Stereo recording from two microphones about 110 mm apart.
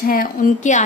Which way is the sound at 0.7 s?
90° left.